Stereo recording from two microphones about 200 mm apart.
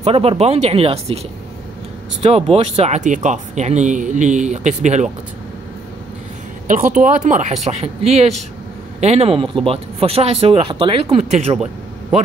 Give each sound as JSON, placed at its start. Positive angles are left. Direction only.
{"t": 0.0, "sound": "speech", "side_deg": -30}
{"t": 2.5, "sound": "speech", "side_deg": -30}
{"t": 6.7, "sound": "speech", "side_deg": -40}